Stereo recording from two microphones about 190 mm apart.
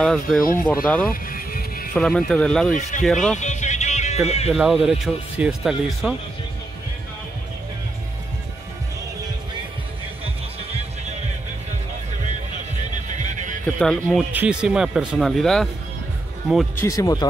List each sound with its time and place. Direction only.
0.0 s speech: 5° left (ahead or behind)
1.1 s vehicle: 50° left (ahead or behind)
2.0 s speech: centre (ahead or behind)
2.7 s speech: 40° left (ahead or behind)
3.0 s speech: centre (ahead or behind)
3.3 s music: 40° left (ahead or behind)
4.3 s speech: 35° left (ahead or behind)
4.6 s speech: centre (ahead or behind)
13.2 s music: 40° right (ahead or behind)
13.7 s speech: 5° left (ahead or behind)
16.8 s speech: 20° left (ahead or behind)